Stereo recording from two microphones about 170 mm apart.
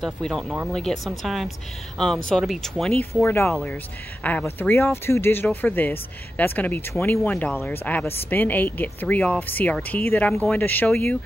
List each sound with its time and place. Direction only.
0.0 s speech: centre (ahead or behind)